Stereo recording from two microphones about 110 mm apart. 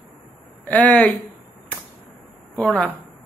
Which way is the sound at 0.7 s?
15° left (ahead or behind).